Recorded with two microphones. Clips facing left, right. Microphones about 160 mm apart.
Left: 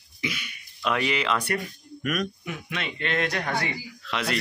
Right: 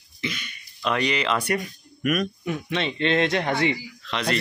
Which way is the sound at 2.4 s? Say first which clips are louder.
Right 7 dB; 30° right (ahead or behind).